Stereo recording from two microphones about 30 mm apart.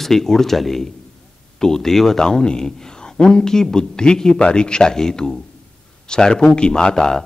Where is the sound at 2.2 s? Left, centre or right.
Left.